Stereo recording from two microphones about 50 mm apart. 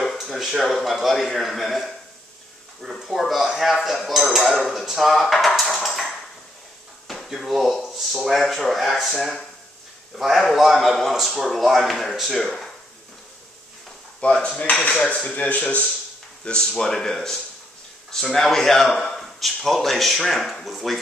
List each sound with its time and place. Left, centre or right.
0.0 s a sound: centre
0.7 s a man's voice: centre
5.2 s a sound: centre
7.1 s a man's voice: centre
12.4 s speech: centre
14.2 s speech: left
16.4 s a man's voice: centre